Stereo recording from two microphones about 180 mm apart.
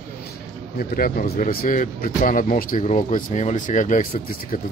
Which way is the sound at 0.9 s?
55° left (ahead or behind).